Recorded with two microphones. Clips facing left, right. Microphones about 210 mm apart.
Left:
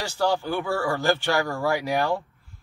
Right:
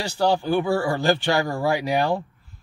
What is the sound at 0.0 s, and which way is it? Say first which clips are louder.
Speech: right 3 dB; 15° right (ahead or behind).